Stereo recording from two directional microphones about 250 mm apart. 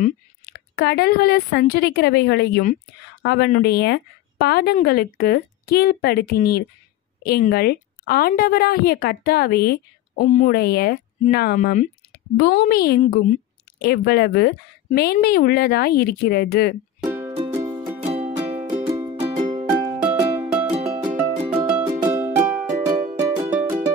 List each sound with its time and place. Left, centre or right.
0.0 s a woman's voice: left
17.0 s music: centre
18.0 s music: right
18.9 s music: centre
19.2 s music: right
20.0 s music: centre
22.0 s music: centre